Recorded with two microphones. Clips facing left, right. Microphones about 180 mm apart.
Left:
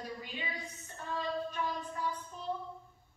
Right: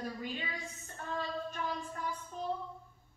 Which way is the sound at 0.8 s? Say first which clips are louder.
Left 2 dB; 45° right (ahead or behind).